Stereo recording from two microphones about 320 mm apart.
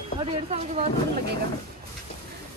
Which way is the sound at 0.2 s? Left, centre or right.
Centre.